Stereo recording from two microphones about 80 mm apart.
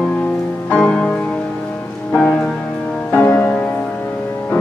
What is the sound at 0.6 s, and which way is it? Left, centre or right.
Music, centre.